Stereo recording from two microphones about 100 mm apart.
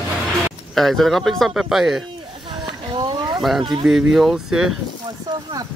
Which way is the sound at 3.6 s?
55° right (ahead or behind).